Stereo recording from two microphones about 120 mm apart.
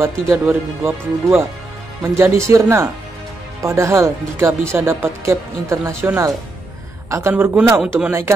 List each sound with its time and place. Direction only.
0.0 s speech: 20° right (ahead or behind)